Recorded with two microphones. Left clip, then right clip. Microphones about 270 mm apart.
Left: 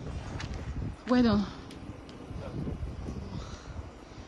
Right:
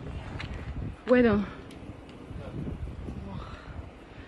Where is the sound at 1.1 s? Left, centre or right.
Centre.